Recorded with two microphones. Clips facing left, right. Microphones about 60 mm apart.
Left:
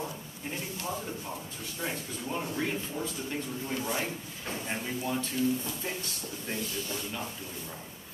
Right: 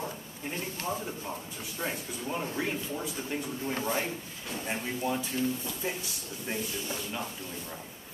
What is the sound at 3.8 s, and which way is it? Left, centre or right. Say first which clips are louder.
Speech: right 2 dB; right.